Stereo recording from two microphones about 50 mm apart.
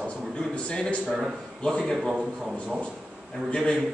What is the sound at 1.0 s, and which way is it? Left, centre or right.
Speech, centre.